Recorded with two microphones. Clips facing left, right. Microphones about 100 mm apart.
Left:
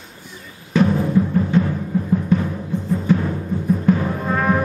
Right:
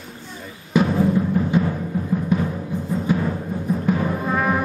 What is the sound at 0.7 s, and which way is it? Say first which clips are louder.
Timpani: left 1 dB; 10° right (ahead or behind).